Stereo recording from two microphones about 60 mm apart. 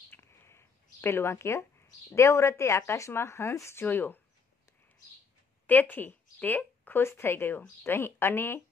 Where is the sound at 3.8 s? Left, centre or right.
Left.